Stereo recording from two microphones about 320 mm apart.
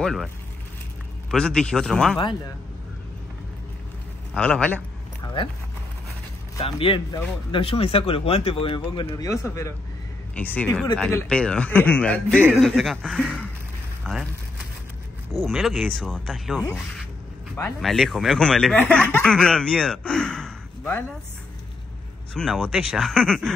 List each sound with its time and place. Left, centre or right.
0.0 s speech: centre
1.3 s speech: centre
4.3 s speech: centre
5.2 s a sound: centre
6.5 s speech: centre
15.3 s speech: centre
22.3 s speech: centre